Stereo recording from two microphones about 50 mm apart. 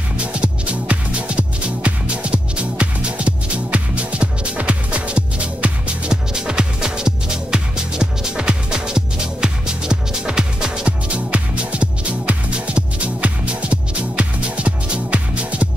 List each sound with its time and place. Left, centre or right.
0.2 s music: right